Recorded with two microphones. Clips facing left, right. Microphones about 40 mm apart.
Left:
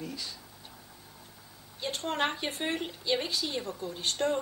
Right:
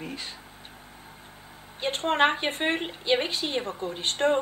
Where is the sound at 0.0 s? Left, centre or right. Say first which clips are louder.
Right 3 dB; right.